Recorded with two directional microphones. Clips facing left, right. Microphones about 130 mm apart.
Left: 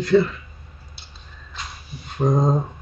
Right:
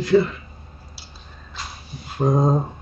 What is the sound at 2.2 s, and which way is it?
Speech, 5° right (ahead or behind).